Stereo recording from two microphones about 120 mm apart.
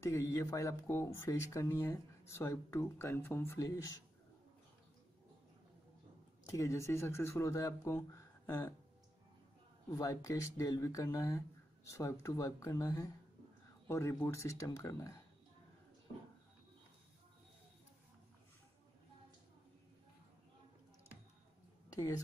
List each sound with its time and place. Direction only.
0.0 s speech: 25° left (ahead or behind)
6.5 s speech: 25° left (ahead or behind)
9.8 s speech: 30° left (ahead or behind)
21.9 s speech: 30° left (ahead or behind)